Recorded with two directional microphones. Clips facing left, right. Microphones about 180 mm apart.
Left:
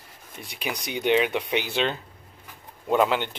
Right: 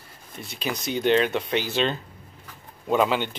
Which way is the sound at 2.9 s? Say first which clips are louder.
Even; 5° right (ahead or behind).